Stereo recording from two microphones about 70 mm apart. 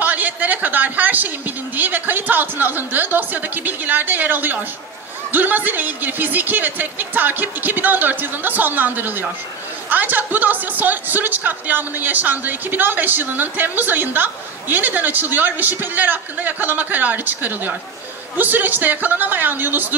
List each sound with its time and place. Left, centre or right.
0.0 s speech: right